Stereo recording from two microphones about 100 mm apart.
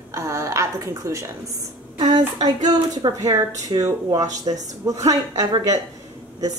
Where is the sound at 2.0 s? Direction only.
45° right (ahead or behind).